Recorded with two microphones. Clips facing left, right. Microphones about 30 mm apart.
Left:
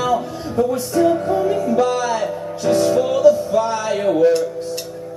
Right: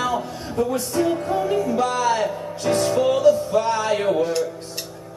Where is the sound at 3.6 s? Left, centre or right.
Right.